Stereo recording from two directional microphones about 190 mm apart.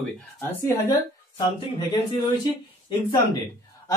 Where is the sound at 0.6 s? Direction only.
20° left (ahead or behind).